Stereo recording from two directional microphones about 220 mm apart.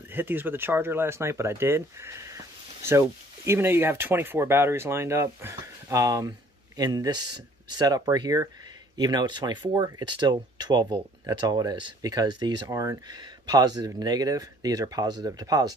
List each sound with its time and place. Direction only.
0.1 s speech: 10° right (ahead or behind)